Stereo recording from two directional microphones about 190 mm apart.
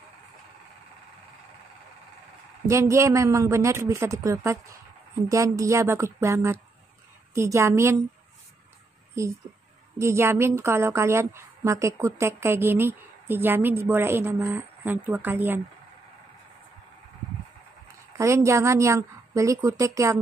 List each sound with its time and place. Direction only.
2.7 s a woman's voice: 15° right (ahead or behind)
9.2 s a woman's voice: 15° right (ahead or behind)
18.1 s a woman's voice: 15° right (ahead or behind)